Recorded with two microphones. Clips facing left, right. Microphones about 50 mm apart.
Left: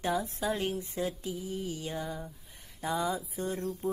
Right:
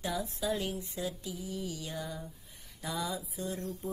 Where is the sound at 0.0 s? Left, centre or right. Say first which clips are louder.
Left 3 dB; left.